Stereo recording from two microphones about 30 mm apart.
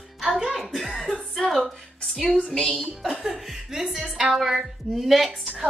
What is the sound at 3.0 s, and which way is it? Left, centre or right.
A woman's voice, centre.